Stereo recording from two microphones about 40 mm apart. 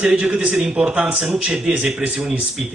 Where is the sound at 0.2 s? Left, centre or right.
Right.